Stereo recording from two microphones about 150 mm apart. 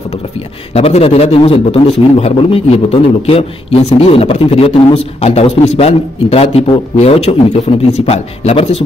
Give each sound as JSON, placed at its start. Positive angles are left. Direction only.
{"t": 0.7, "sound": "a man's voice", "side_deg": 40}